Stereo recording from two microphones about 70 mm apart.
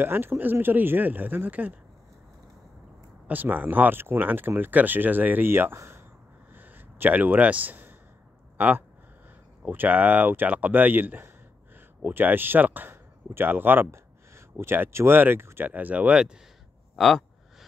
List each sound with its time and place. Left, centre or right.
0.0 s speech: right
3.3 s speech: right
6.5 s a sound: right
8.5 s speech: right
16.9 s speech: centre